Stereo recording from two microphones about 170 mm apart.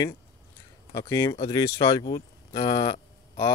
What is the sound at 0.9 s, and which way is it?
Speech, 15° left (ahead or behind).